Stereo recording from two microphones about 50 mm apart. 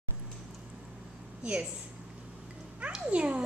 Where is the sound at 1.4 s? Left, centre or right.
Right.